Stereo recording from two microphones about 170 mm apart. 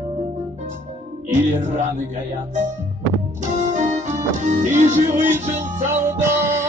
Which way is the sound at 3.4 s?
45° right (ahead or behind).